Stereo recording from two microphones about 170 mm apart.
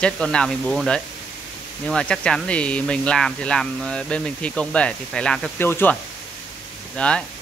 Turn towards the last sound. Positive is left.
turn(degrees=5)  # may be behind; listen again after turning